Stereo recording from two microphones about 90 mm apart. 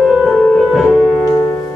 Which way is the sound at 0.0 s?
Centre (ahead or behind).